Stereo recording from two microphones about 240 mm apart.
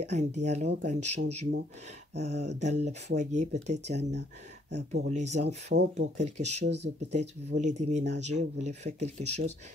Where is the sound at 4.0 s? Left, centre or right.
Right.